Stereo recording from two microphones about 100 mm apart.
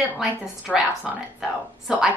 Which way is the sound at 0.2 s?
5° right (ahead or behind).